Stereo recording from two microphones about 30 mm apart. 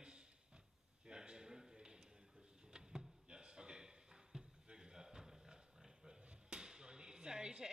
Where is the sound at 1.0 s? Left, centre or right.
Right.